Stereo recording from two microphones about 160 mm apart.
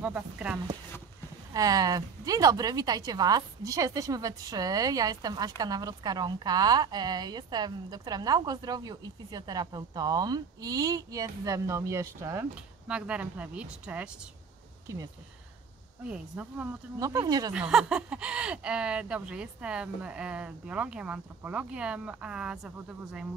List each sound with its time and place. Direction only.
0.0 s speech: 10° right (ahead or behind)
1.5 s a woman's voice: 25° right (ahead or behind); by 14.1 s 5° right (ahead or behind)
16.1 s speech: 10° right (ahead or behind)
17.0 s a woman's voice: 25° right (ahead or behind)
17.6 s speech: 5° right (ahead or behind)